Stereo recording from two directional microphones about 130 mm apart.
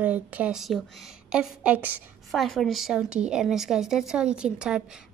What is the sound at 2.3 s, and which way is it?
Speech, centre (ahead or behind).